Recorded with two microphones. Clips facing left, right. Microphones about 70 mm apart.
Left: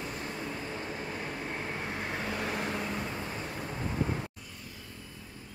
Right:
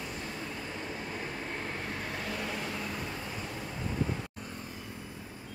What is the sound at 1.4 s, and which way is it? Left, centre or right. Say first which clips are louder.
Vehicle: left 1 dB; centre.